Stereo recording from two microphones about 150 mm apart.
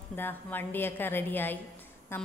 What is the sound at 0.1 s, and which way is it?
A woman's voice, 15° left (ahead or behind).